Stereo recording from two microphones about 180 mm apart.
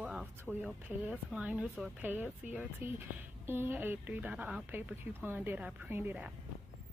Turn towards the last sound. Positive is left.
turn(degrees=-10)  # may be behind; listen again after turning